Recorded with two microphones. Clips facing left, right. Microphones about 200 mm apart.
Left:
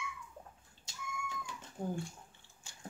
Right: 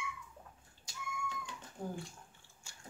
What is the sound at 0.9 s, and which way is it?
Cat, 25° left (ahead or behind).